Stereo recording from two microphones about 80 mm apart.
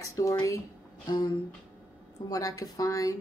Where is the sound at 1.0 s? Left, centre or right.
Left.